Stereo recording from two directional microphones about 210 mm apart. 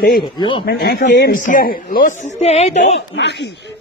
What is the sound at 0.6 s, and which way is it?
A man's voice, 45° left (ahead or behind).